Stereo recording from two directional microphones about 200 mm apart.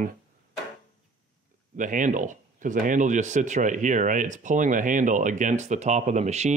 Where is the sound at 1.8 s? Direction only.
40° right (ahead or behind).